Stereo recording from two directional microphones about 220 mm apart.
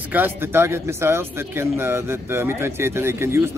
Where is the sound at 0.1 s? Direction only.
10° right (ahead or behind).